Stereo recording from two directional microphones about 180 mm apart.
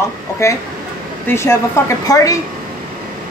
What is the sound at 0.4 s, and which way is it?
Speech, 15° left (ahead or behind).